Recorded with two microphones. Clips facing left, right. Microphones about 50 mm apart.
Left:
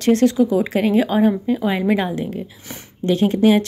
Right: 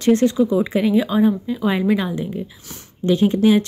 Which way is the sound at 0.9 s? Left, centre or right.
Left.